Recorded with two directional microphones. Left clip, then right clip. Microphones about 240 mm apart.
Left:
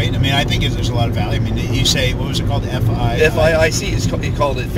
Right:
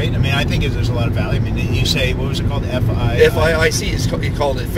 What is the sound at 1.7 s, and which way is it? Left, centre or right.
Speech, centre.